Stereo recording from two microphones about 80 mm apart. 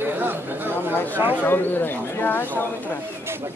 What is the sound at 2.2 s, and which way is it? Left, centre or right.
Speech, left.